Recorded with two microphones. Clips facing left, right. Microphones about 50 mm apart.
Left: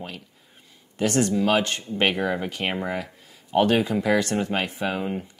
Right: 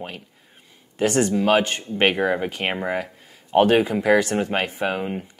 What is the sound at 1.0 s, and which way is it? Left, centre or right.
Speech, centre.